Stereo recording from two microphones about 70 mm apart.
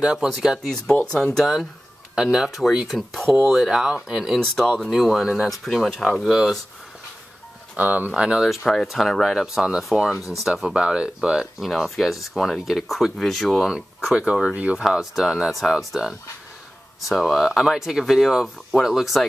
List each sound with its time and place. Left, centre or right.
0.0 s speech: centre
0.3 s speech: centre
1.1 s speech: centre
1.4 s speech: centre
6.3 s speech: centre
7.7 s speech: right
8.2 s speech: centre
8.5 s speech: centre
10.1 s speech: left
10.6 s speech: centre
14.8 s speech: centre